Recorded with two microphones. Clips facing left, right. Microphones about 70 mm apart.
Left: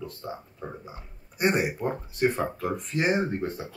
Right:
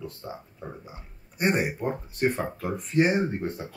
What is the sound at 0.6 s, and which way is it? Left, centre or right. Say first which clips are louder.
Speech: left 1 dB; left.